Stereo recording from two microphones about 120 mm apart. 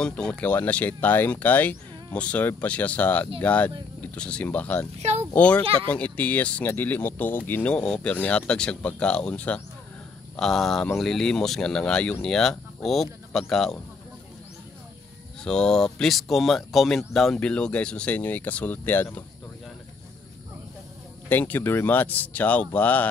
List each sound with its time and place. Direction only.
0.0 s speech: 10° left (ahead or behind)
4.9 s speech: 65° right (ahead or behind)
5.3 s speech: 10° left (ahead or behind)
15.4 s speech: 5° left (ahead or behind)
21.3 s speech: 15° left (ahead or behind)